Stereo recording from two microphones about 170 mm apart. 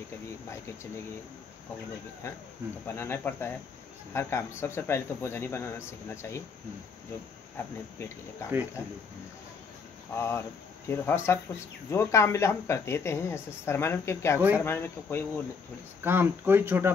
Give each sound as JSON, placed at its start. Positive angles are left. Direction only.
{"t": 2.9, "sound": "speech", "side_deg": 10}
{"t": 7.5, "sound": "speech", "side_deg": 15}
{"t": 10.1, "sound": "speech", "side_deg": 15}
{"t": 16.0, "sound": "speech", "side_deg": -10}